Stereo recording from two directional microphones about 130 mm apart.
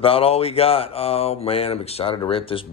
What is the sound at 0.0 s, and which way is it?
Speech, 45° left (ahead or behind).